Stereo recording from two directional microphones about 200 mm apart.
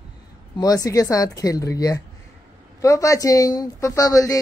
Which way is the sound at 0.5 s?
20° left (ahead or behind).